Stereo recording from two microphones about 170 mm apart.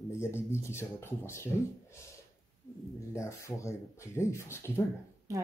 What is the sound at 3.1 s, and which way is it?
Speech, 15° left (ahead or behind).